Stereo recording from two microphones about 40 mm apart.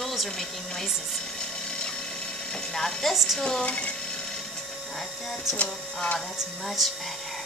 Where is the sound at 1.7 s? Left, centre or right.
Centre.